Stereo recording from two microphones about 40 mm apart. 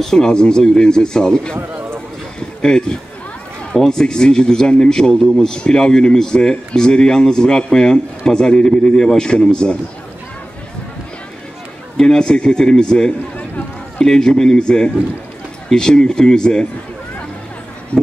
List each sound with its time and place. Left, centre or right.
0.0 s a man's voice: centre
2.6 s a man's voice: centre
12.0 s a man's voice: centre
17.9 s speech: left